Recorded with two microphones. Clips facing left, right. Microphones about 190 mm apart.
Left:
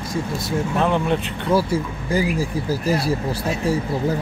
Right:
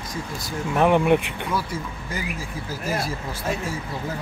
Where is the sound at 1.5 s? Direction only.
30° left (ahead or behind).